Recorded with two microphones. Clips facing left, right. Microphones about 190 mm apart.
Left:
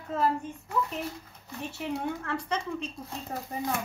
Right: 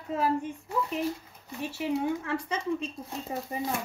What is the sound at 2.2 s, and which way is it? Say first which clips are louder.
Speech: right 1 dB; 5° right (ahead or behind).